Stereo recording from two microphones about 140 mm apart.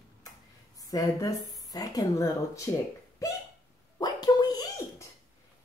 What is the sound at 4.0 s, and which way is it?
Gargling, 25° left (ahead or behind).